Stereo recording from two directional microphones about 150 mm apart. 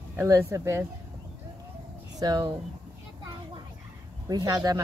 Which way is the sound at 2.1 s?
25° right (ahead or behind).